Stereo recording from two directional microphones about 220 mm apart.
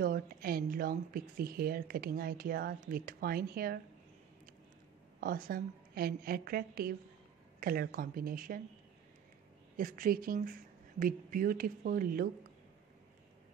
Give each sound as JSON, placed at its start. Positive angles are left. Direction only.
{"t": 0.0, "sound": "speech", "side_deg": -45}
{"t": 5.2, "sound": "speech", "side_deg": -40}
{"t": 9.8, "sound": "speech", "side_deg": -40}